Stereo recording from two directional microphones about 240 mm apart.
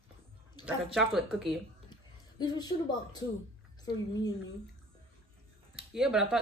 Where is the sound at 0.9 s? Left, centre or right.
Centre.